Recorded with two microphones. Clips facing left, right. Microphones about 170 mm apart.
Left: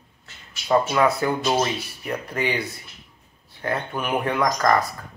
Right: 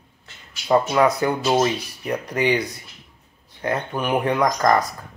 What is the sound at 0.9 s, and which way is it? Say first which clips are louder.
Speech: right 2 dB; 15° right (ahead or behind).